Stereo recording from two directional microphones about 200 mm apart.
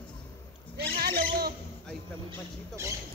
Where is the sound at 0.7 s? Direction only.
50° right (ahead or behind).